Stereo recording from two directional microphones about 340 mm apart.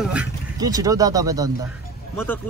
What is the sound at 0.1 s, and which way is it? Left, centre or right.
Speech, centre.